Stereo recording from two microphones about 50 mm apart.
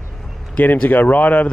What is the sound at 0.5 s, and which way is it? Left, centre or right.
Speech, left.